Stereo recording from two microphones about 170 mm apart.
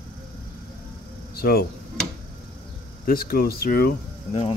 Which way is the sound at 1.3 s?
65° left (ahead or behind).